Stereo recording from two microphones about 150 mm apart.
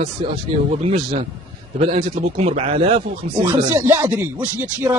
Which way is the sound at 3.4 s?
15° right (ahead or behind).